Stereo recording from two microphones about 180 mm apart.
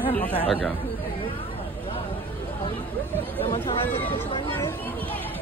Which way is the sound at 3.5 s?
30° left (ahead or behind).